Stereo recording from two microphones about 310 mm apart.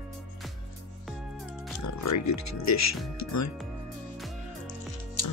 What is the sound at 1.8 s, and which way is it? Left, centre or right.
Speech, left.